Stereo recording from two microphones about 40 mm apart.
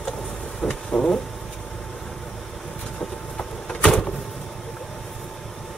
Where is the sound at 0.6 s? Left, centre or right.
Centre.